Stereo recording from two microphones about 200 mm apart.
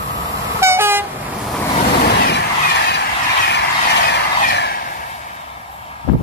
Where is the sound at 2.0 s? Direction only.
55° left (ahead or behind).